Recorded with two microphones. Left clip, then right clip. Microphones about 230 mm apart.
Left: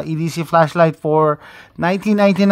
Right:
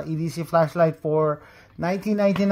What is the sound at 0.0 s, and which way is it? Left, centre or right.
Speech, left.